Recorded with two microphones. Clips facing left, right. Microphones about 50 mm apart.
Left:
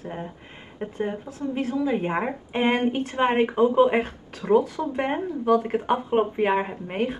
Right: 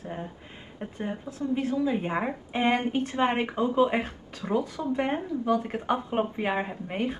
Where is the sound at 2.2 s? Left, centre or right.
Centre.